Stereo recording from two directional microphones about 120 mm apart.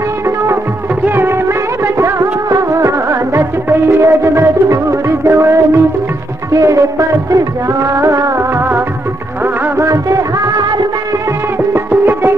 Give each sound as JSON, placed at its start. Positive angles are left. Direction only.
{"t": 1.0, "sound": "music", "side_deg": -20}
{"t": 2.0, "sound": "music of bollywood", "side_deg": -25}
{"t": 5.2, "sound": "music", "side_deg": -25}
{"t": 11.7, "sound": "music", "side_deg": -20}